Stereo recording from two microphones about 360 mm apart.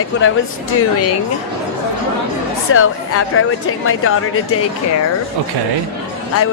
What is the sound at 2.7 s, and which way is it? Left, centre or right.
A woman's voice, left.